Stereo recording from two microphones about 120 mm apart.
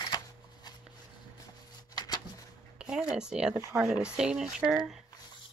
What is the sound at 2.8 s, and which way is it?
Speech, 5° right (ahead or behind).